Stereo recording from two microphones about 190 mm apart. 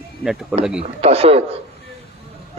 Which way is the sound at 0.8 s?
30° right (ahead or behind).